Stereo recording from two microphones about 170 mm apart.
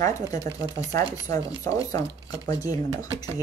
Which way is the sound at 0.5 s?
20° left (ahead or behind).